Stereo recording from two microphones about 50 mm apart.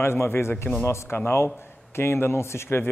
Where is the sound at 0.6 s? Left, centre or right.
Left.